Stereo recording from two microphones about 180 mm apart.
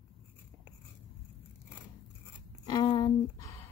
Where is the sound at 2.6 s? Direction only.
20° left (ahead or behind).